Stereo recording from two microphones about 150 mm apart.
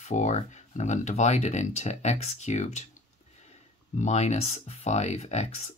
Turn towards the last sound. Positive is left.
turn(degrees=50)  # may be behind; listen again after turning